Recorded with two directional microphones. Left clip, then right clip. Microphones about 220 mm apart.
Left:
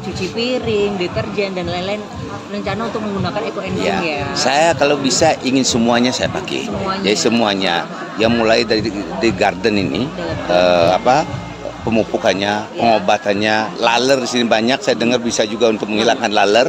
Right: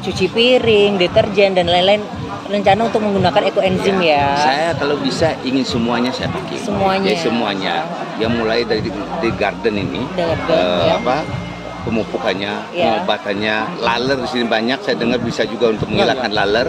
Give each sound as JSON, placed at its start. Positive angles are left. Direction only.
{"t": 0.4, "sound": "speech", "side_deg": -35}
{"t": 4.5, "sound": "speech", "side_deg": 45}